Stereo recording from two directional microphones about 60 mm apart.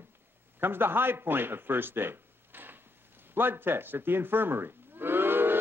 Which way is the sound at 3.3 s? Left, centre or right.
Right.